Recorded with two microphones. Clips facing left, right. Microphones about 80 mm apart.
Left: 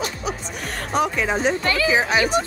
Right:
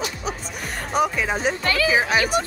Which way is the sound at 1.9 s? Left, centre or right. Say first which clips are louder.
Left 1 dB; centre.